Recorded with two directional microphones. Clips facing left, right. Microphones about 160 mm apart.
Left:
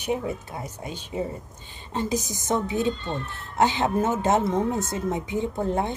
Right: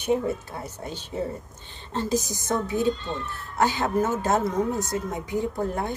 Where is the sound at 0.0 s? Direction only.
15° left (ahead or behind).